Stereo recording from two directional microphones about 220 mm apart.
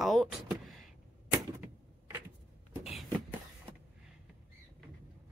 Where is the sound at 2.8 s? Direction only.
Centre (ahead or behind).